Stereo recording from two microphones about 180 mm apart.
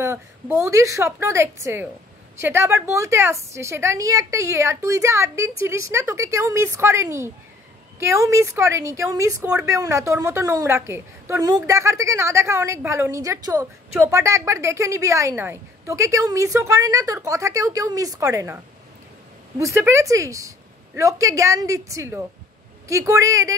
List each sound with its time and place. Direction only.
0.0 s a woman's voice: 15° right (ahead or behind)
19.6 s a woman's voice: 15° right (ahead or behind)